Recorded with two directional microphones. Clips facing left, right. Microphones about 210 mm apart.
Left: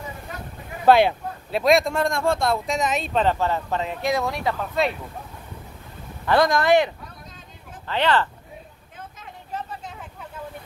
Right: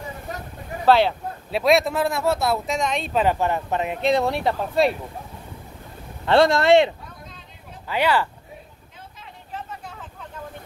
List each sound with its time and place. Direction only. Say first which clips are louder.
0.8 s speech: left 1 dB; 15° left (ahead or behind)
1.5 s speech: even; centre (ahead or behind); by 4.1 s 20° right (ahead or behind)
4.2 s speech: right 3 dB; 30° right (ahead or behind)
6.2 s speech: right 3 dB; 25° right (ahead or behind)
7.8 s speech: even; 10° right (ahead or behind)